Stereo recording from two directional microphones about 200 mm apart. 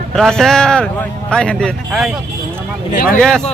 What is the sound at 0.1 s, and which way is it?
Speech, centre (ahead or behind).